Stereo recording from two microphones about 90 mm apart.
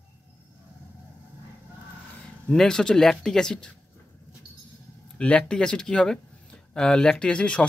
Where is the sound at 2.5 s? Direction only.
5° left (ahead or behind).